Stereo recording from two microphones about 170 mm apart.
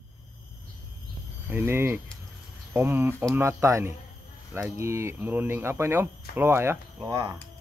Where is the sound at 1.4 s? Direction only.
15° right (ahead or behind).